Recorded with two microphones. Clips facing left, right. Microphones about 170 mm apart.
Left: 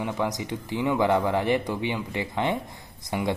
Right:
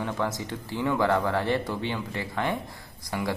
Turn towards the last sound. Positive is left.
turn(degrees=20)  # may be behind; listen again after turning